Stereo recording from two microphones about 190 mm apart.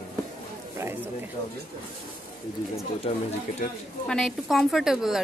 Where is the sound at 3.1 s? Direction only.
25° left (ahead or behind).